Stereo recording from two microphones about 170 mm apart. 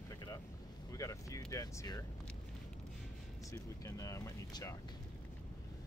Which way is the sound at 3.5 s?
20° left (ahead or behind).